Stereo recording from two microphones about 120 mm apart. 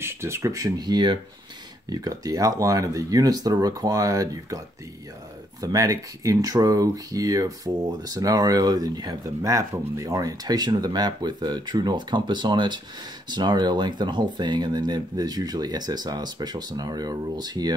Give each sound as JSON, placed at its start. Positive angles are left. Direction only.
{"t": 0.0, "sound": "speech", "side_deg": -20}
{"t": 5.6, "sound": "speech", "side_deg": -30}